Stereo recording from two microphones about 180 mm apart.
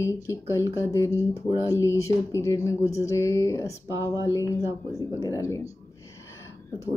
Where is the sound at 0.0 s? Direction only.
15° left (ahead or behind).